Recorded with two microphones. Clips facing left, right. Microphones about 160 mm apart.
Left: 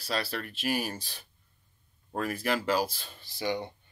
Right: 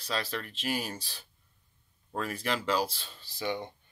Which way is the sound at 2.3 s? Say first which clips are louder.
Left 2 dB; 10° left (ahead or behind).